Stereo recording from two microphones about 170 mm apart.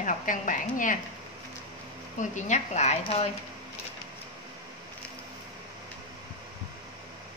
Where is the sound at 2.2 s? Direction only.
45° left (ahead or behind).